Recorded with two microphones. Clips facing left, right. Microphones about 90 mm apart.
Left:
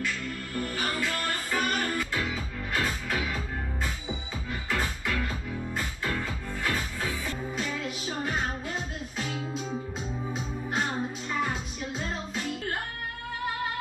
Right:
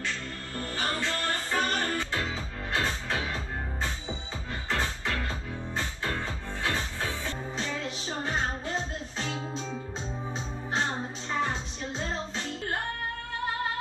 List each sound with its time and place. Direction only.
0.0 s music: 30° right (ahead or behind)